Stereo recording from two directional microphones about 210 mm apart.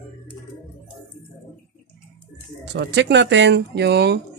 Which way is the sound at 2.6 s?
55° right (ahead or behind).